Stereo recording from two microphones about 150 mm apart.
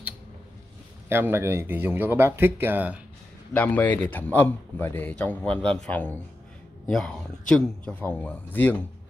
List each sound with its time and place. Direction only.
1.0 s speech: 15° right (ahead or behind)
3.5 s a man's voice: 10° left (ahead or behind)